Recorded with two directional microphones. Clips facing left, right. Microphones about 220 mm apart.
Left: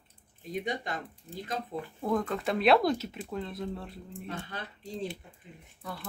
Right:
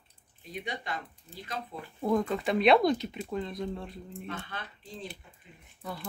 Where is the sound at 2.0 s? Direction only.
Centre (ahead or behind).